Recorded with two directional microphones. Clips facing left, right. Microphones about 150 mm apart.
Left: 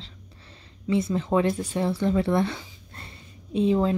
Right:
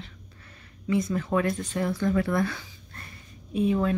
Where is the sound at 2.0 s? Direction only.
25° left (ahead or behind).